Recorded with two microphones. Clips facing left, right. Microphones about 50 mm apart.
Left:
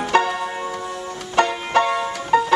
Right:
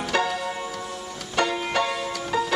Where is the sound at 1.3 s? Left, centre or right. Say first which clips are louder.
Left 6 dB; left.